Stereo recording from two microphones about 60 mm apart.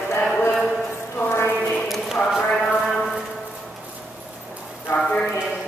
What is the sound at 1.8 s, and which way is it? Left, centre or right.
Clip-clop, centre.